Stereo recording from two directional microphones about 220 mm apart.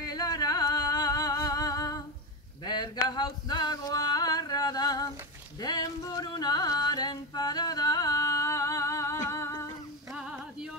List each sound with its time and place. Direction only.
0.0 s music: 15° left (ahead or behind)
2.6 s a sound: 20° left (ahead or behind)
5.6 s music: 20° left (ahead or behind)
10.1 s music: 5° right (ahead or behind)